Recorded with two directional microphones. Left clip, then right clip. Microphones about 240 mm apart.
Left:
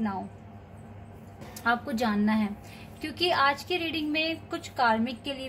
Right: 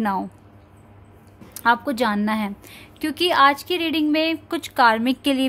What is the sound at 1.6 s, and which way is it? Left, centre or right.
A woman's voice, right.